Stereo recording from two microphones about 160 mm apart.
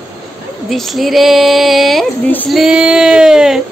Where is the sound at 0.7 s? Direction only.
Centre (ahead or behind).